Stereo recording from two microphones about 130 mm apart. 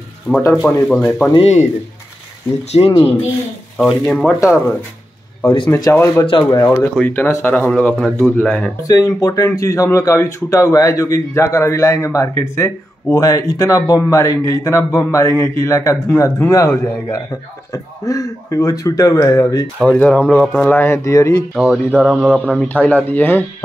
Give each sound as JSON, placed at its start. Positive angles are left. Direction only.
{"t": 0.4, "sound": "a man's voice", "side_deg": 25}
{"t": 1.0, "sound": "speech", "side_deg": 10}
{"t": 1.4, "sound": "speech", "side_deg": 60}
{"t": 2.8, "sound": "speech", "side_deg": 50}
{"t": 3.7, "sound": "speech", "side_deg": 5}
{"t": 5.8, "sound": "a man's voice", "side_deg": 25}
{"t": 6.8, "sound": "speech", "side_deg": 15}
{"t": 8.8, "sound": "a man's voice", "side_deg": 25}
{"t": 19.8, "sound": "speech", "side_deg": 5}
{"t": 21.5, "sound": "speech", "side_deg": -5}
{"t": 22.6, "sound": "speech", "side_deg": 10}